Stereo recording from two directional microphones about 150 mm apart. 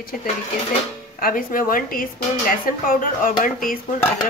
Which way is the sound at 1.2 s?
70° left (ahead or behind).